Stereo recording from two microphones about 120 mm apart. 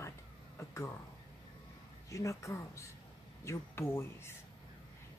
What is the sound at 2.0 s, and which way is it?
Speech, 25° left (ahead or behind).